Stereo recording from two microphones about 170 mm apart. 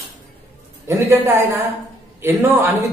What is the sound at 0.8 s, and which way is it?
A man's voice, 15° right (ahead or behind).